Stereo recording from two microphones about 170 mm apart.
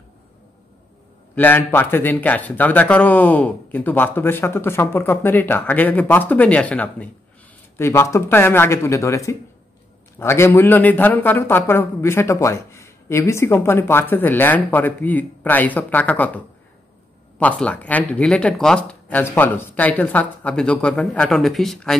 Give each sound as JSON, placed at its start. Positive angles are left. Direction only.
{"t": 1.3, "sound": "a man's voice", "side_deg": 10}
{"t": 17.4, "sound": "a man's voice", "side_deg": 10}